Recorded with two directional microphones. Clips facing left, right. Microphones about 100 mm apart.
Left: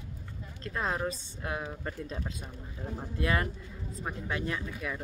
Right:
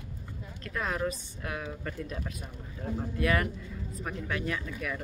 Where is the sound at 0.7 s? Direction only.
25° left (ahead or behind).